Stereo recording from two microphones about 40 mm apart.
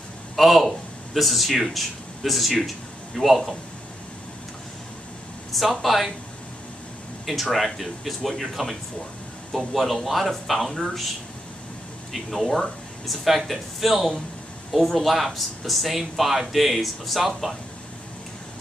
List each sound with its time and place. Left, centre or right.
0.4 s speech: centre
5.5 s speech: centre
7.4 s speech: centre
12.1 s speech: centre